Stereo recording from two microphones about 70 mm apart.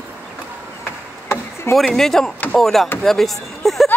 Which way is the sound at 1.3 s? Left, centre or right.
Left.